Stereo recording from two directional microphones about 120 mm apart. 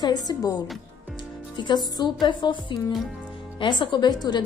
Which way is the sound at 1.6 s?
35° left (ahead or behind).